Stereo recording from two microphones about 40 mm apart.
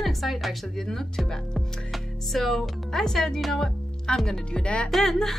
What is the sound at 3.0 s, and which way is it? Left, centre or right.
Speech, centre.